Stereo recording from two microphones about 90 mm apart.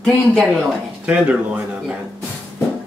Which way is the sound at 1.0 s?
10° right (ahead or behind).